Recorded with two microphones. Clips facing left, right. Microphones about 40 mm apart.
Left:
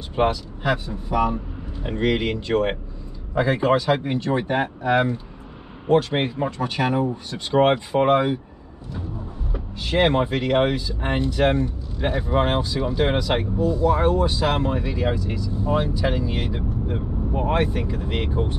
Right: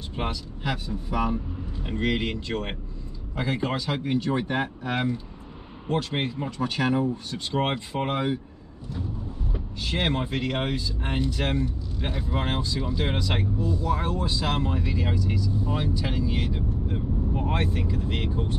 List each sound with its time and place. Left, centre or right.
0.1 s speech: left
9.5 s speech: centre
14.3 s speech: centre
18.3 s speech: left